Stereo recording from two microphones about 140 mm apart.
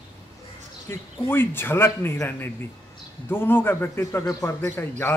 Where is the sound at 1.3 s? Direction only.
15° left (ahead or behind).